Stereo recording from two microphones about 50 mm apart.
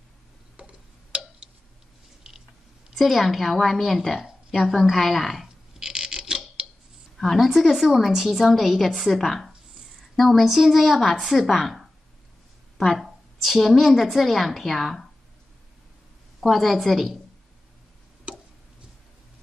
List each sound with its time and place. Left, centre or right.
0.6 s tick-tock: right
3.0 s a woman's voice: centre
5.8 s a sound: centre
7.2 s a woman's voice: centre
16.3 s a woman's voice: centre